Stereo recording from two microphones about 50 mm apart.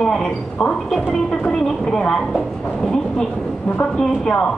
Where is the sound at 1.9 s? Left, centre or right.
Centre.